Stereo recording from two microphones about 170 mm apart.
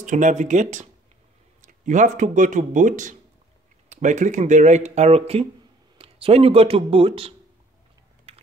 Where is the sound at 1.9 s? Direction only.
45° right (ahead or behind).